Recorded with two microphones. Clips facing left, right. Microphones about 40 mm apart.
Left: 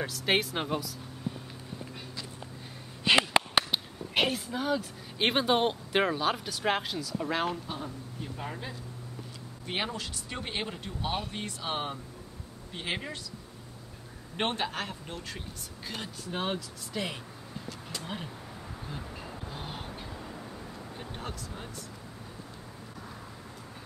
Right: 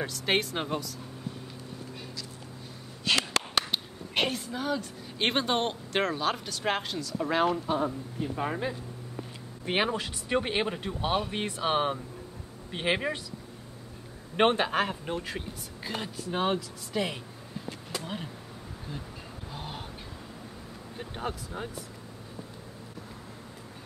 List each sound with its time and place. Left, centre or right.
0.0 s speech: centre
1.3 s clip-clop: left
3.1 s a sound: centre
3.7 s speech: centre
8.4 s speech: right
14.3 s speech: right; by 18.3 s centre
19.5 s a sound: centre
21.0 s speech: centre